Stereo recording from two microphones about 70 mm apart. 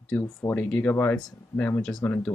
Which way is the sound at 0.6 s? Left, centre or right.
Left.